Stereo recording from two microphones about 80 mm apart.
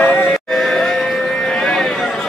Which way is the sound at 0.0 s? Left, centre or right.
Left.